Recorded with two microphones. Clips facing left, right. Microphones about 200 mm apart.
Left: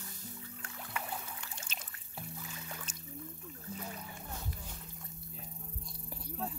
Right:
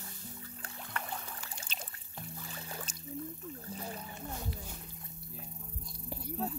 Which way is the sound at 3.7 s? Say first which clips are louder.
Even; 35° right (ahead or behind).